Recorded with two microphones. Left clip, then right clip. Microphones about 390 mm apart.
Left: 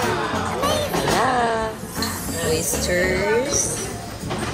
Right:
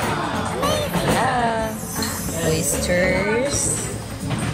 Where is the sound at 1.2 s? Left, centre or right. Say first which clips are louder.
Left 1 dB; centre.